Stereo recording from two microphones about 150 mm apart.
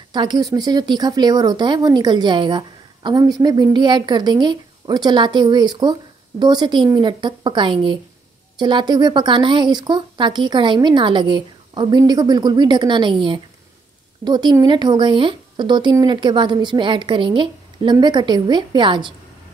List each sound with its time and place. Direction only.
0.1 s speech: 30° right (ahead or behind)